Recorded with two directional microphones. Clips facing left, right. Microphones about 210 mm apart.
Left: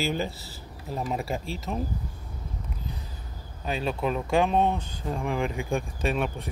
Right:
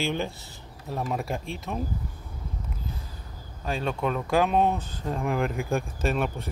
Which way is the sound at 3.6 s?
5° left (ahead or behind).